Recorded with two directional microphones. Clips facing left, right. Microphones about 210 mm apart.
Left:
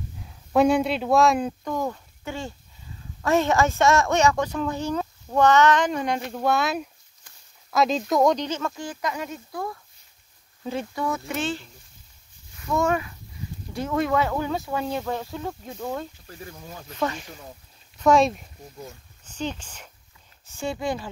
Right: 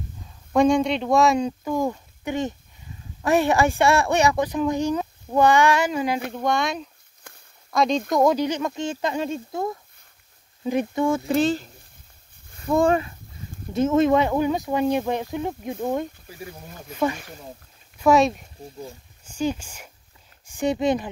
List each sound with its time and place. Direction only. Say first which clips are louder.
0.2 s speech: right 1 dB; 5° left (ahead or behind)
8.5 s speech: right 4 dB; 15° right (ahead or behind)
11.1 s speech: right 8 dB; 30° right (ahead or behind)